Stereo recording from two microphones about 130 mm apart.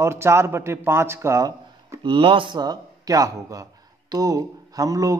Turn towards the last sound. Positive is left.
turn(degrees=-25)  # may be behind; listen again after turning